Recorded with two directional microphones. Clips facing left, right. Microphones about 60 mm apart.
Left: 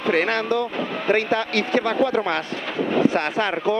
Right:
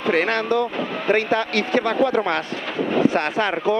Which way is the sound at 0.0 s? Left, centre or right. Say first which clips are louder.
Right 1 dB; right.